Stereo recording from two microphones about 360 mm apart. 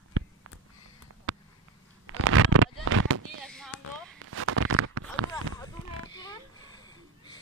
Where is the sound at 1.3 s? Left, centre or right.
Right.